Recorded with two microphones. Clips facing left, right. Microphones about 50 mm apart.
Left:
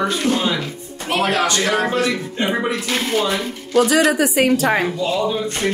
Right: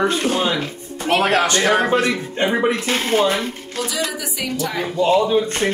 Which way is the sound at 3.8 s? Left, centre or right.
Left.